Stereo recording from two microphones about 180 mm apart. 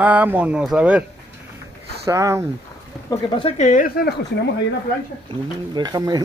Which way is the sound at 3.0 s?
30° left (ahead or behind).